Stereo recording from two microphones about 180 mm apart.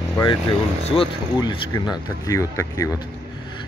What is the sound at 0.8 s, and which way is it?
Speech, 30° left (ahead or behind).